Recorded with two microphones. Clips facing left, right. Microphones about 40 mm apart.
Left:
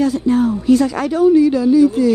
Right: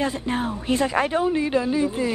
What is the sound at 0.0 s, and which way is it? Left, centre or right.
A man's voice, right.